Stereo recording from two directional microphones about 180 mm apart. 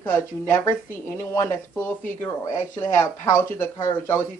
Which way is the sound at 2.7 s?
15° left (ahead or behind).